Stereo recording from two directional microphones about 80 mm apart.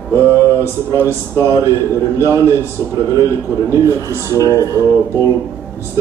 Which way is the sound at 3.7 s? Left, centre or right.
Right.